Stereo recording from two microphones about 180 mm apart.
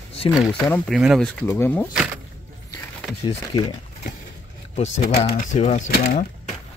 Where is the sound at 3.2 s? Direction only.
25° left (ahead or behind).